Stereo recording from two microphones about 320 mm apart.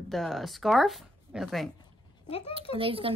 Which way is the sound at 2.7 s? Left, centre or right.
Centre.